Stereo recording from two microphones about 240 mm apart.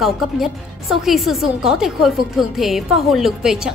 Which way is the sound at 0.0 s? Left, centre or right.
Centre.